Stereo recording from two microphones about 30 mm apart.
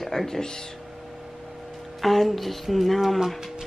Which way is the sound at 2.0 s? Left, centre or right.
Centre.